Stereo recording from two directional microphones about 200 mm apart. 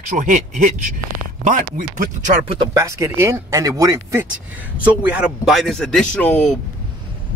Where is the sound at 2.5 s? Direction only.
20° right (ahead or behind).